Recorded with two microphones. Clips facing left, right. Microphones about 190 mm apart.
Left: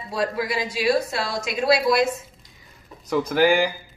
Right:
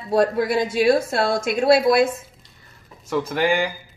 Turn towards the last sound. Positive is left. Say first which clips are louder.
# left 2 dB
turn(degrees=0)  # may be behind; listen again after turning